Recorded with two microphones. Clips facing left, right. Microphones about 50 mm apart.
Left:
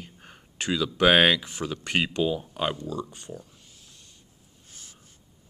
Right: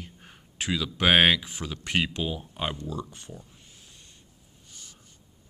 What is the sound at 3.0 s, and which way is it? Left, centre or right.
Speech, centre.